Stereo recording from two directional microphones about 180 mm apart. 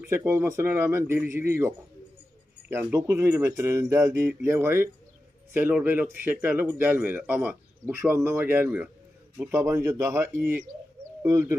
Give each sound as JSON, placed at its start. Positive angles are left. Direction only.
{"t": 0.1, "sound": "speech", "side_deg": -15}
{"t": 2.7, "sound": "speech", "side_deg": -15}